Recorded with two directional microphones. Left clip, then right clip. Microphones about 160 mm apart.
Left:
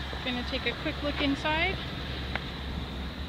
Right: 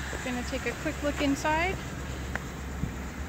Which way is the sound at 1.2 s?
20° right (ahead or behind).